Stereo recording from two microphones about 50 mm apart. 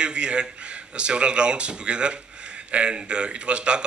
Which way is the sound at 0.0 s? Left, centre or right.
Right.